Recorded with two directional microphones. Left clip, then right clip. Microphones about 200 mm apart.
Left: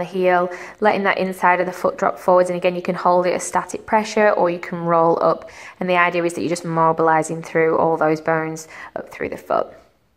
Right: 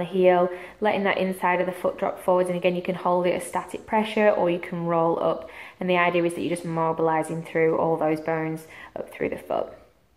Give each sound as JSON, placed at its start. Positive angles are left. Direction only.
{"t": 0.0, "sound": "a woman's voice", "side_deg": 15}